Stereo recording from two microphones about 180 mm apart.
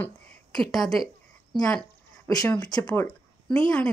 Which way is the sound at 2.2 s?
20° left (ahead or behind).